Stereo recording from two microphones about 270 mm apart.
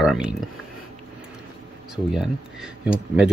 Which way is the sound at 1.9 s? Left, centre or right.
Centre.